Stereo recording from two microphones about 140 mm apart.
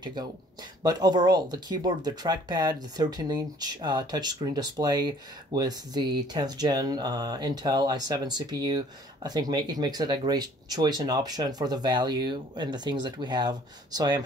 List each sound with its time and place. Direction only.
0.0 s speech: 30° right (ahead or behind)